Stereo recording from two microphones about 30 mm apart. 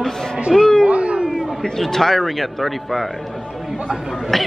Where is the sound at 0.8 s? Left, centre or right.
Right.